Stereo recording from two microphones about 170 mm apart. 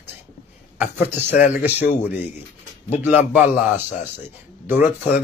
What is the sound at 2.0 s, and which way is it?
Speech, 40° left (ahead or behind).